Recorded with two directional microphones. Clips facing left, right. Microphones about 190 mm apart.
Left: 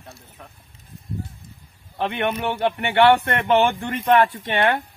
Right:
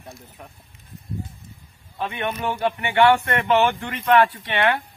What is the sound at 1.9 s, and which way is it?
Speech, 65° left (ahead or behind).